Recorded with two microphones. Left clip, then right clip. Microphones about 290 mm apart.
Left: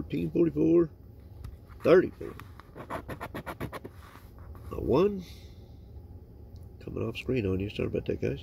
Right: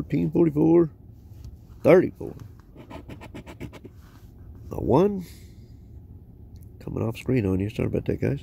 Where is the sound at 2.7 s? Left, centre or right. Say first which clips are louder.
Left 5 dB; centre.